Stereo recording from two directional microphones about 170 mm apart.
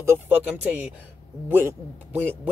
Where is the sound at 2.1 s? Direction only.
10° right (ahead or behind).